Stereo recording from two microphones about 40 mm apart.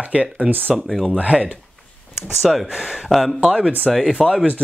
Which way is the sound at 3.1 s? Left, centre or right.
Centre.